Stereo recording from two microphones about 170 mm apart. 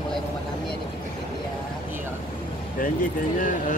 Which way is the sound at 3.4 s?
50° left (ahead or behind).